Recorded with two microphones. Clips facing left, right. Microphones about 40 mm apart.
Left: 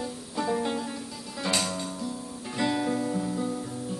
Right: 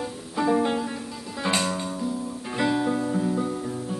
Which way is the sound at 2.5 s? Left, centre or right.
Centre.